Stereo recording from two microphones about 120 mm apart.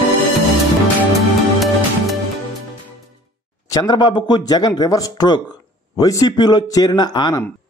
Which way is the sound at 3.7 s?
35° left (ahead or behind).